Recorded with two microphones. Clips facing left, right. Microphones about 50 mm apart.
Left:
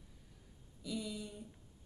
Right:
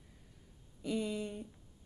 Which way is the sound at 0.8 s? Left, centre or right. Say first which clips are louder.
Right 6 dB; right.